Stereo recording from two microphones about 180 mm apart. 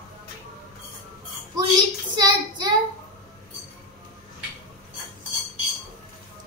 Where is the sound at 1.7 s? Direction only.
25° right (ahead or behind).